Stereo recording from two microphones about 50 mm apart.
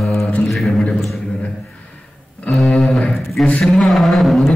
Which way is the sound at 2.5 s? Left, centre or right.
Centre.